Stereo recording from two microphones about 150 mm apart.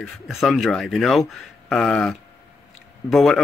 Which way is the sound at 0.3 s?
Centre (ahead or behind).